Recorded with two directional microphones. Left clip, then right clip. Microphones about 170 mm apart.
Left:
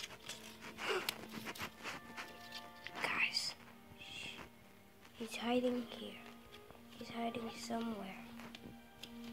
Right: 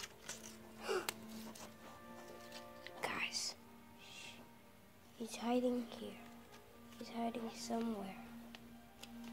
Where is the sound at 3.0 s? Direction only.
10° right (ahead or behind).